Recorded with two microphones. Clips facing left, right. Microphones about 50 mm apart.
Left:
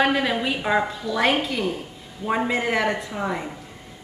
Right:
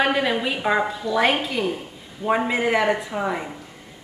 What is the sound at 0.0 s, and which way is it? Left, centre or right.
A woman's voice, centre.